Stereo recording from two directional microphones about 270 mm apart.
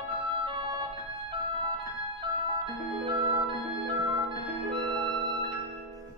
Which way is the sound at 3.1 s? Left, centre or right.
Centre.